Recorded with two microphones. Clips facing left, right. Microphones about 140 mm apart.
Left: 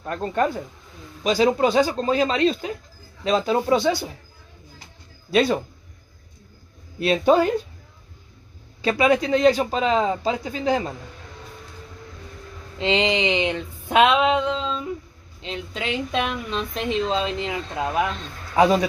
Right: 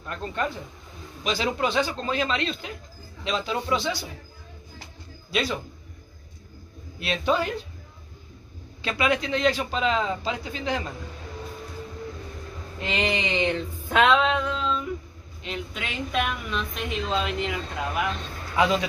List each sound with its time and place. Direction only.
0.0 s speech: 40° left (ahead or behind)
5.3 s speech: 45° left (ahead or behind)
7.0 s speech: 40° left (ahead or behind)
8.8 s speech: 35° left (ahead or behind)
12.7 s a sound: 25° left (ahead or behind)
15.4 s a woman's voice: 30° left (ahead or behind)